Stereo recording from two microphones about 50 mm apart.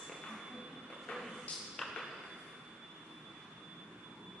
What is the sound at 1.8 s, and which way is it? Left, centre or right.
Ping, centre.